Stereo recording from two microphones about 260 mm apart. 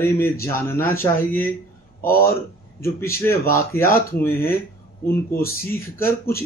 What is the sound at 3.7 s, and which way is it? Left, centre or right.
Speech, left.